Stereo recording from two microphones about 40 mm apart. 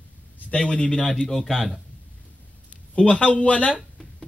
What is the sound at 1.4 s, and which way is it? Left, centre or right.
Speech, centre.